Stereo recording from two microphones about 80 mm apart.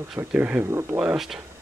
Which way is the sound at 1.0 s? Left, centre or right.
Centre.